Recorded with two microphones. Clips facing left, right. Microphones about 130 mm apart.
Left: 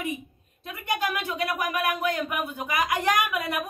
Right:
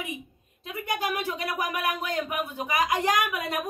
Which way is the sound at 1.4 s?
20° right (ahead or behind).